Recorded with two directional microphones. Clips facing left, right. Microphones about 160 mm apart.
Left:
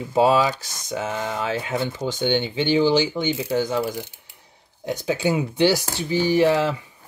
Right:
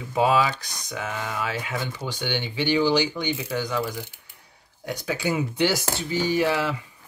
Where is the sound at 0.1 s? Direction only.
30° left (ahead or behind).